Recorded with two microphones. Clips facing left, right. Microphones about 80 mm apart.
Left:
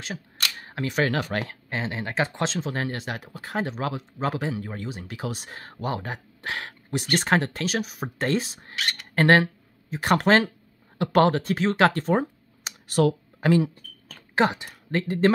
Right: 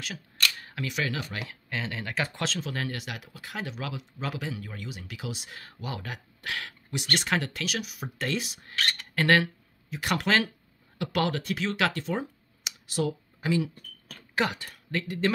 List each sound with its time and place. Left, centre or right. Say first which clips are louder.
0.4 s speech: left 1 dB; left
1.4 s speech: left 4 dB; left
8.7 s speech: even; centre
9.1 s speech: left 5 dB; left
14.3 s a woman's voice: left 6 dB; left
14.9 s speech: left 7 dB; left